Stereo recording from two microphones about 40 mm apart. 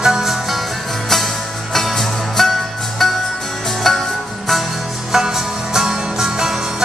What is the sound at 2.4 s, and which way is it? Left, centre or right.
Music, centre.